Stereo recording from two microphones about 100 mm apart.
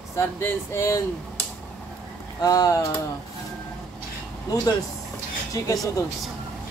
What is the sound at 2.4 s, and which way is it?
Speech, 40° left (ahead or behind).